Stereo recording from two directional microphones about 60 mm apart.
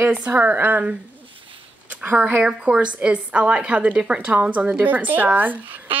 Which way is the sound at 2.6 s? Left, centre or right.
Centre.